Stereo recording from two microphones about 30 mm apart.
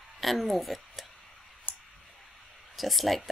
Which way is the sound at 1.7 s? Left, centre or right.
Left.